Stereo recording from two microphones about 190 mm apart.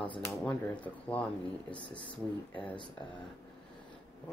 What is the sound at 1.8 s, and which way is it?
Speech, 25° left (ahead or behind).